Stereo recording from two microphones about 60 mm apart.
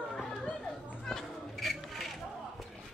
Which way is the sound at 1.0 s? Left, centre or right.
Centre.